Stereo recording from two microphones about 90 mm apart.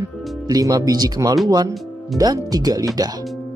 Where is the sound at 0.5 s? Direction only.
40° right (ahead or behind).